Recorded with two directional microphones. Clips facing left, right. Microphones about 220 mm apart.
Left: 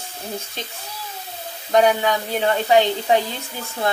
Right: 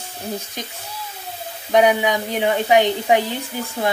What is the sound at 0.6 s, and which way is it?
Speech, 15° right (ahead or behind).